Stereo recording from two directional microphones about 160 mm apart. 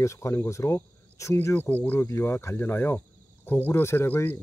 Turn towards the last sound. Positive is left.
turn(degrees=15)  # may be behind; listen again after turning